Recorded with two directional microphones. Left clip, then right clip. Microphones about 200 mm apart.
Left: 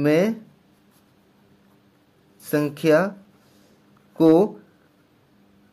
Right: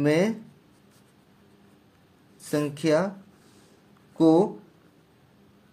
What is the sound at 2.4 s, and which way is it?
Speech, 20° left (ahead or behind).